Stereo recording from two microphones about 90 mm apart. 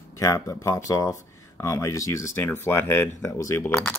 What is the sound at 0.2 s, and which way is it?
Speech, 35° left (ahead or behind).